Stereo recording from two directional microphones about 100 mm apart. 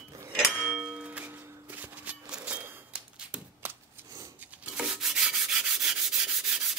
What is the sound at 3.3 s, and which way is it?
Shuffling cards, 10° right (ahead or behind).